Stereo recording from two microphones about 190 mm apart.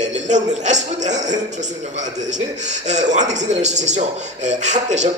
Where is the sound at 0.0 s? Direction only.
40° right (ahead or behind).